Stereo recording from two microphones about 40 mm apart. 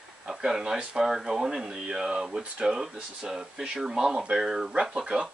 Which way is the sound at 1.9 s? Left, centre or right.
Right.